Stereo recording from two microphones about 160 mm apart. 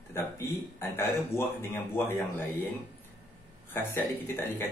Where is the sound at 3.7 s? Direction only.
15° left (ahead or behind).